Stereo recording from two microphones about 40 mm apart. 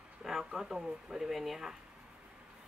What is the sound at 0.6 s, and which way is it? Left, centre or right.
Speech, centre.